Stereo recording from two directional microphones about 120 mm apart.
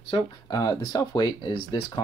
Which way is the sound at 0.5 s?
35° left (ahead or behind).